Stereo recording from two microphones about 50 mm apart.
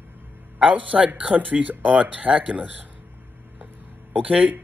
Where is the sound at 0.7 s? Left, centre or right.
Right.